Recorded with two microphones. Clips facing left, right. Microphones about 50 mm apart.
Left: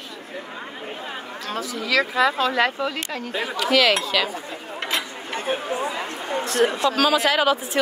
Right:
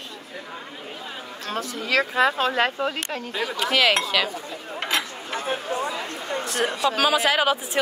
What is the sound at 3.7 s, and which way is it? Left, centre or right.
Speech, centre.